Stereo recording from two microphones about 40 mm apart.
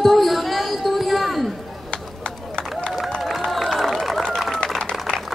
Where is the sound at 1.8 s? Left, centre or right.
Left.